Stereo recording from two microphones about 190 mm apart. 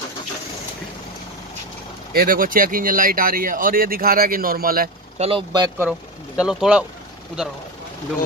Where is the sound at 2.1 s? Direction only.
50° right (ahead or behind).